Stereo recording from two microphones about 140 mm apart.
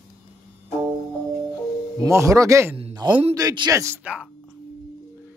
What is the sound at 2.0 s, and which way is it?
A man's voice, 20° right (ahead or behind).